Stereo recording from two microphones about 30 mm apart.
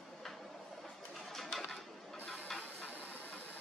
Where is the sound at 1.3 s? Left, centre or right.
Centre.